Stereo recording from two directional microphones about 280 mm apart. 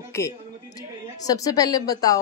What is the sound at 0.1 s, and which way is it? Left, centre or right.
A woman's voice, centre.